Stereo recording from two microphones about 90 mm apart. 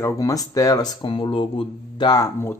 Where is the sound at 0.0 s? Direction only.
45° left (ahead or behind).